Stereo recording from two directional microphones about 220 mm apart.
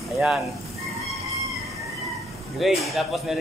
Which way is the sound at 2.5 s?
Centre (ahead or behind).